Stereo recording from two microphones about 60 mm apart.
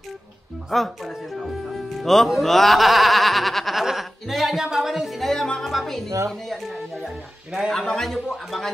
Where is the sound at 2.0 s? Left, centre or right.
Centre.